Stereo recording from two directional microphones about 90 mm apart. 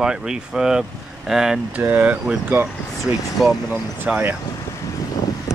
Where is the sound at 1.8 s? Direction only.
20° right (ahead or behind).